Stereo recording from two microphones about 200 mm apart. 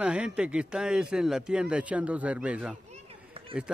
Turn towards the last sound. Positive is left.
turn(degrees=-30)  # may be behind; listen again after turning